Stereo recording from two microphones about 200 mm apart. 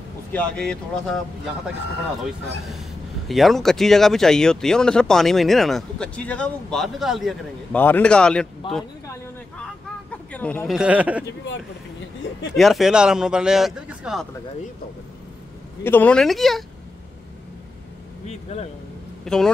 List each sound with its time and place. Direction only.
0.3 s speech: 5° left (ahead or behind)
3.3 s speech: centre (ahead or behind)
10.3 s speech: 5° left (ahead or behind)
10.8 s speech: 5° right (ahead or behind)
12.5 s speech: centre (ahead or behind)
15.8 s speech: 10° left (ahead or behind)
18.2 s speech: 35° left (ahead or behind)
19.2 s speech: 5° left (ahead or behind)